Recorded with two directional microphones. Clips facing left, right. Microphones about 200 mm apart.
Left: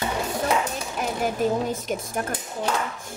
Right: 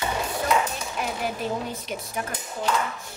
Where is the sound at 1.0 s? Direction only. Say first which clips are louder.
Left 5 dB; 45° left (ahead or behind).